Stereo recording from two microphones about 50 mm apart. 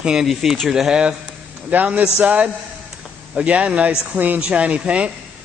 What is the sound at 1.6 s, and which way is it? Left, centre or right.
Speech, right.